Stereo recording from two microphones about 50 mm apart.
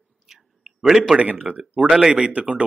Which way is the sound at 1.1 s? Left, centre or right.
Right.